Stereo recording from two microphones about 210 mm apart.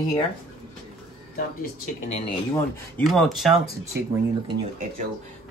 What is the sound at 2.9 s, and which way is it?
Speech, centre (ahead or behind).